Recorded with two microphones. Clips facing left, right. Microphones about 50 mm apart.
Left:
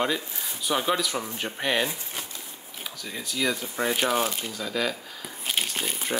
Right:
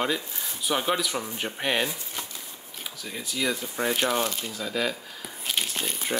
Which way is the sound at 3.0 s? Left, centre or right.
Centre.